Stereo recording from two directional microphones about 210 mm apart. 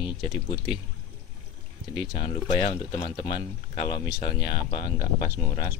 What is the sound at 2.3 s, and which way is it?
Speech, 25° left (ahead or behind).